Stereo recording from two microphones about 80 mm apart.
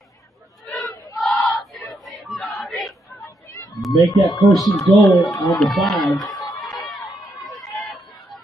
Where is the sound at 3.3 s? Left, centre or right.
Left.